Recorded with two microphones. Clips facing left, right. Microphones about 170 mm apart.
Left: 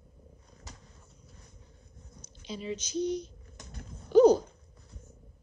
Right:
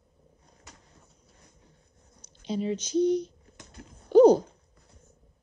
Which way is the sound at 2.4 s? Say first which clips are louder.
Right 7 dB; 60° right (ahead or behind).